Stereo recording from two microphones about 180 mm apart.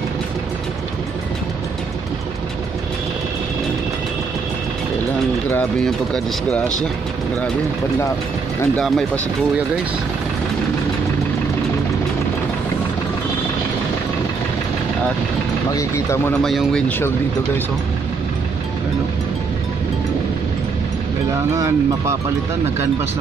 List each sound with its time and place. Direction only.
5.5 s speech: 5° left (ahead or behind)
8.7 s speech: 5° left (ahead or behind)
15.7 s speech: 15° left (ahead or behind)
16.4 s speech: centre (ahead or behind)
21.5 s speech: 15° right (ahead or behind)